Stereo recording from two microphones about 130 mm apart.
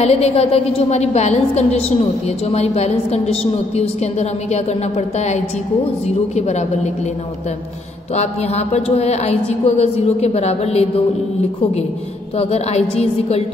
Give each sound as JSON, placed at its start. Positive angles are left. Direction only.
{"t": 0.0, "sound": "a woman's voice", "side_deg": 55}
{"t": 8.1, "sound": "a woman's voice", "side_deg": 55}
{"t": 12.4, "sound": "a woman's voice", "side_deg": 55}